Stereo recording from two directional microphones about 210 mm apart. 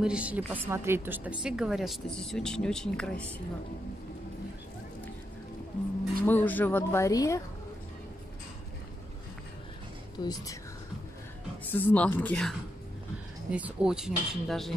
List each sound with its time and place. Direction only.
0.0 s a woman's voice: 5° right (ahead or behind)
6.2 s speech: 10° left (ahead or behind)
10.1 s speech: 15° left (ahead or behind)
11.6 s speech: 10° left (ahead or behind)
13.5 s a woman's voice: 5° right (ahead or behind)